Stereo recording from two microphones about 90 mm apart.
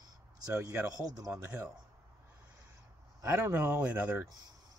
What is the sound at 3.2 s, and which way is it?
Speech, 30° right (ahead or behind).